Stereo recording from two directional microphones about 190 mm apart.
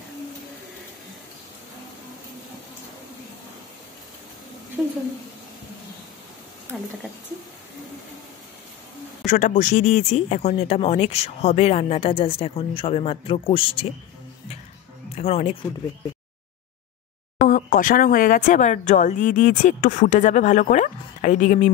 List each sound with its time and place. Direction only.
9.2 s speech: 40° left (ahead or behind)
15.1 s speech: 35° left (ahead or behind)
17.4 s speech: 45° left (ahead or behind)